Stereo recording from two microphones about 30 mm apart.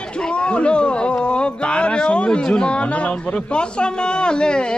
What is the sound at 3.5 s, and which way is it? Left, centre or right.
A man's voice, left.